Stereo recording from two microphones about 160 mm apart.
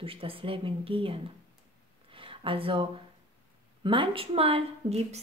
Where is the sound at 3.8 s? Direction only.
30° right (ahead or behind).